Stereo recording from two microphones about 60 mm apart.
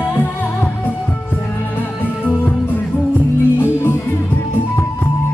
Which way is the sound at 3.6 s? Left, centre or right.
Left.